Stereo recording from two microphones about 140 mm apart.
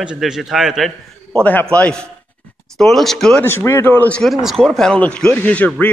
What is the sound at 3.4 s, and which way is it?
Speech, 20° left (ahead or behind).